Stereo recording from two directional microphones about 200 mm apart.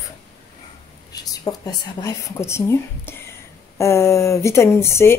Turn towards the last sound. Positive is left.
turn(degrees=15)  # may be behind; listen again after turning